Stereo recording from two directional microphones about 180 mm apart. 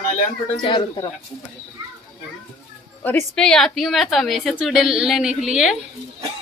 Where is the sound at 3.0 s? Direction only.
10° left (ahead or behind).